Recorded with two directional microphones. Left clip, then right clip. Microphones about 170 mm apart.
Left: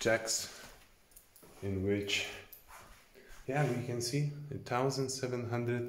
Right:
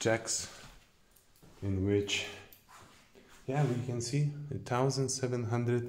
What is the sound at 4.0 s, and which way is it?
Speech, 30° right (ahead or behind).